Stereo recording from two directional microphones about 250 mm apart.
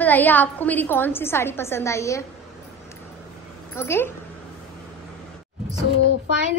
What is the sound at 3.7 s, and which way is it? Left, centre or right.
Speech, centre.